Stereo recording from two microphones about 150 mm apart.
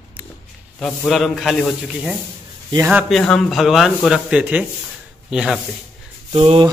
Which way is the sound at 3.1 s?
5° left (ahead or behind).